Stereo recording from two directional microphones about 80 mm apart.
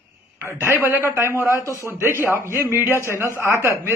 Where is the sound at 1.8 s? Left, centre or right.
Right.